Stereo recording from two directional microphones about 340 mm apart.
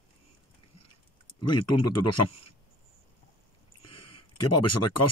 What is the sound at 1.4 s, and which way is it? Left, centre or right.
Speech, left.